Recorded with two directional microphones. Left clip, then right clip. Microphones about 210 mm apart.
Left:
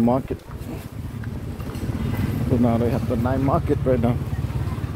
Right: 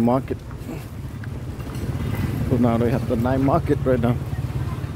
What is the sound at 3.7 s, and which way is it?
Speech, 20° right (ahead or behind).